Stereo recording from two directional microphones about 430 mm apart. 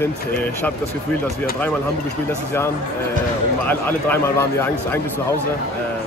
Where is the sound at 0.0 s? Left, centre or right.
Centre.